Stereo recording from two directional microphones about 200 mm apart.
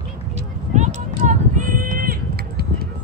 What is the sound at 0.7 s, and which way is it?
Run, 35° right (ahead or behind).